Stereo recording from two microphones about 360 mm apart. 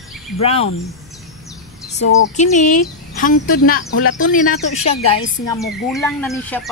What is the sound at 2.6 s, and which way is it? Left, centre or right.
A woman's voice, left.